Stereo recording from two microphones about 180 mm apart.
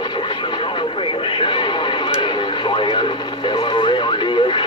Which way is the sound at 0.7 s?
30° left (ahead or behind).